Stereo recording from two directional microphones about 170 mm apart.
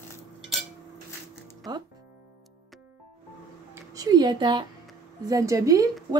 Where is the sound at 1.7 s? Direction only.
25° right (ahead or behind).